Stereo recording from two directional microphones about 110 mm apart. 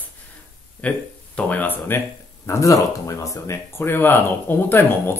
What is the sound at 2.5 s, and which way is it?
Speech, 30° left (ahead or behind).